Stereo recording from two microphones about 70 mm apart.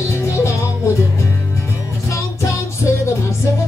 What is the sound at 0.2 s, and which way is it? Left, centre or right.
Music, left.